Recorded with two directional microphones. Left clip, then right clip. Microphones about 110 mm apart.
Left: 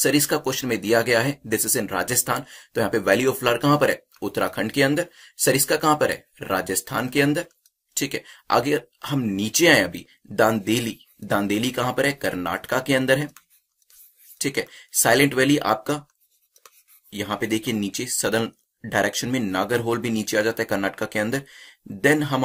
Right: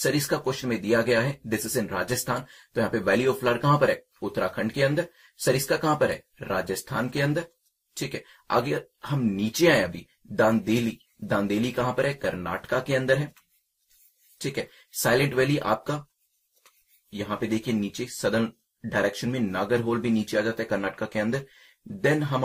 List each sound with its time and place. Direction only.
0.0 s speech: 25° left (ahead or behind)
14.4 s speech: 25° left (ahead or behind)
17.1 s speech: 25° left (ahead or behind)